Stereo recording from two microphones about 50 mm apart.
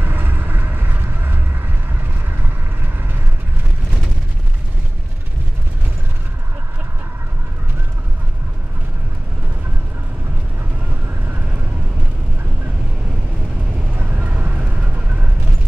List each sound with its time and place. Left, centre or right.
0.0 s vehicle: right
11.1 s vehicle: right
13.9 s vehicle: right